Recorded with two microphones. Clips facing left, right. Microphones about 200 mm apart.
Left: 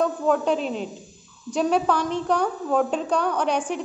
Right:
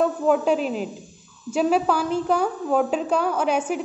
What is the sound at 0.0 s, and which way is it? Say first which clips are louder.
A woman's voice: right 2 dB; 5° right (ahead or behind).